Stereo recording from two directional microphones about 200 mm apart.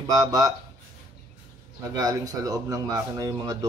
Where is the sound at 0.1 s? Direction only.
20° right (ahead or behind).